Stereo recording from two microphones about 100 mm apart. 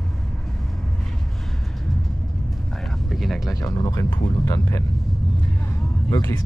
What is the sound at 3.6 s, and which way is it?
Speech, 35° left (ahead or behind).